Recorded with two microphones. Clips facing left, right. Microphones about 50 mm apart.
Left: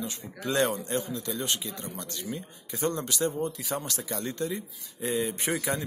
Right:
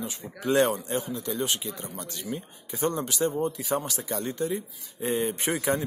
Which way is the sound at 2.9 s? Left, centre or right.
Centre.